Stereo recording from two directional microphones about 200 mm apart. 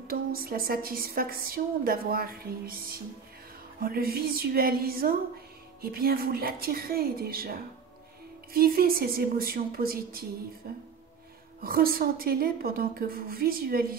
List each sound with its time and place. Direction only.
0.1 s a woman's voice: 50° right (ahead or behind)
8.5 s a woman's voice: 50° right (ahead or behind)